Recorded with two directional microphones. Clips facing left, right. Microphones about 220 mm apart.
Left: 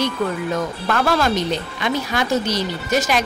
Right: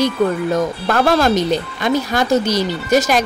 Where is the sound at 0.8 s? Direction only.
40° right (ahead or behind).